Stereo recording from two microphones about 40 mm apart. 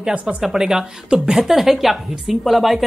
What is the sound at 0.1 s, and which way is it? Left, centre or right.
Speech, right.